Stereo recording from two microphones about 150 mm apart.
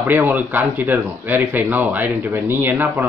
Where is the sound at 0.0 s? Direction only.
10° right (ahead or behind).